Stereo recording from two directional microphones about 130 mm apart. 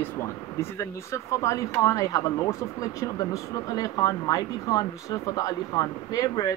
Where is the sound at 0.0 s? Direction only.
20° left (ahead or behind).